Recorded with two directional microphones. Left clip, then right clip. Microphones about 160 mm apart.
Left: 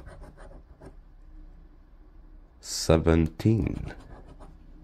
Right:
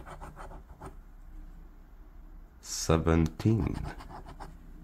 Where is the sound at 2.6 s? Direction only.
25° left (ahead or behind).